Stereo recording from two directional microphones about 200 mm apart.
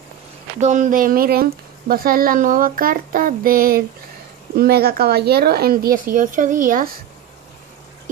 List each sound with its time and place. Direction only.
0.6 s speech: 35° right (ahead or behind)